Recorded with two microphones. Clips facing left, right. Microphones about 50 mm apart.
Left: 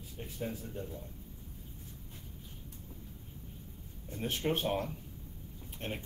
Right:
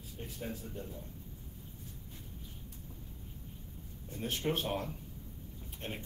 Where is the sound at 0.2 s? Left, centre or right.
Centre.